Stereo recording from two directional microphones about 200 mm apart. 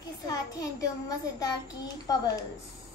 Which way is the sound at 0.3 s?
15° left (ahead or behind).